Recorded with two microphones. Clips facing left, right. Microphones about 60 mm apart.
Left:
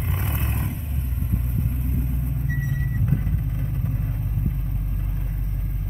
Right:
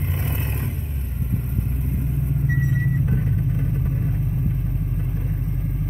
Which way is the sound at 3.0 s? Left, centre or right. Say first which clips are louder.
Right 3 dB; centre.